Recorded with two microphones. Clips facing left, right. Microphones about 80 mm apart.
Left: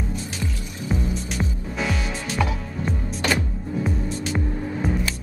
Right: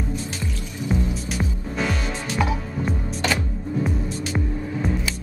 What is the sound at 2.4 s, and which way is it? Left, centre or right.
Music, centre.